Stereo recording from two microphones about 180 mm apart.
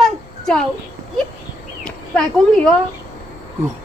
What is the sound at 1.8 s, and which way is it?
Speech, 5° left (ahead or behind).